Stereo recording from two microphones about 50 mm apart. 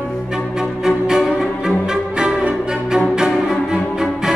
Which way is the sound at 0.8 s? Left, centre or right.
Centre.